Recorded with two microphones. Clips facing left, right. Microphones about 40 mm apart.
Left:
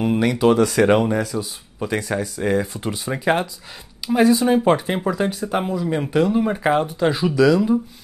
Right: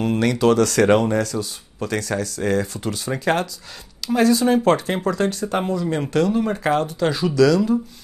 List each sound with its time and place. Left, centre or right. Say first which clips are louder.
0.0 s speech: left 1 dB; centre